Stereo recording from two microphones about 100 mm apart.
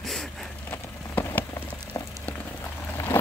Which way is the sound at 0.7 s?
20° left (ahead or behind).